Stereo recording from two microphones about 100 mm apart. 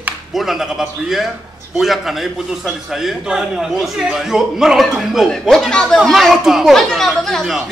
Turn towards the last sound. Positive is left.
turn(degrees=0)  # may be behind; listen again after turning